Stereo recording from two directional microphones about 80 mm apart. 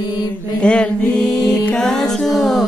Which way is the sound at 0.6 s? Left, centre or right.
Centre.